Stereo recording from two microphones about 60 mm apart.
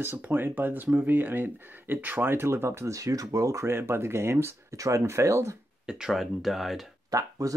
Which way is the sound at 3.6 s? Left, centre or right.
Right.